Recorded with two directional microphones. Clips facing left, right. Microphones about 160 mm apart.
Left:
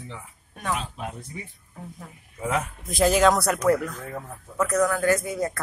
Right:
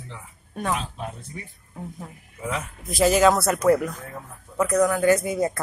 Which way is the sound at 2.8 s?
Centre (ahead or behind).